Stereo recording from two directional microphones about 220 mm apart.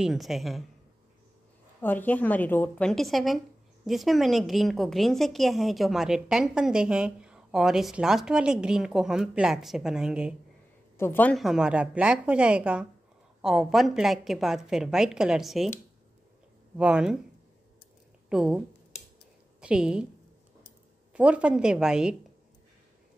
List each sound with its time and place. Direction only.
0.0 s a woman's voice: centre (ahead or behind)
1.8 s a woman's voice: 10° left (ahead or behind)
11.0 s a woman's voice: 10° left (ahead or behind)
16.7 s a woman's voice: 5° right (ahead or behind)
18.3 s speech: 5° right (ahead or behind)
19.6 s a woman's voice: 5° right (ahead or behind)
21.1 s a woman's voice: 5° right (ahead or behind)